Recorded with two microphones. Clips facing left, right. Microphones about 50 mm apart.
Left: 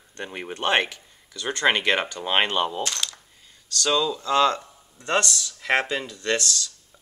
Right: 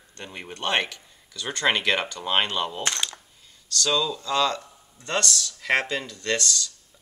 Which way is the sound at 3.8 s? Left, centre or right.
Centre.